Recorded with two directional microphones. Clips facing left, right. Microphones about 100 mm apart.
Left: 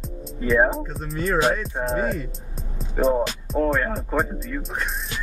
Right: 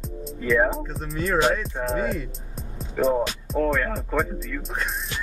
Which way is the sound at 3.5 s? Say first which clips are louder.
Left 1 dB; 30° left (ahead or behind).